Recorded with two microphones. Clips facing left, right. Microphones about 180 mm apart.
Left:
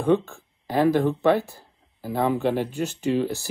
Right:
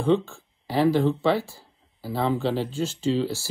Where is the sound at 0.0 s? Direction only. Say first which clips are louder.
Left 1 dB; 15° left (ahead or behind).